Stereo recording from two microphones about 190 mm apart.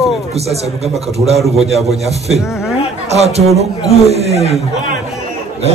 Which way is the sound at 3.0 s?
35° right (ahead or behind).